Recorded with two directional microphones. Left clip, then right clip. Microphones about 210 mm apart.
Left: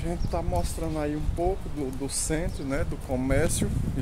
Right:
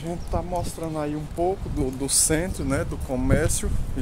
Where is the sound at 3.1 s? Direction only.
5° right (ahead or behind).